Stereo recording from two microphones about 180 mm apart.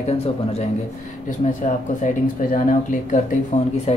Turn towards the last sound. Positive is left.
turn(degrees=35)  # may be behind; listen again after turning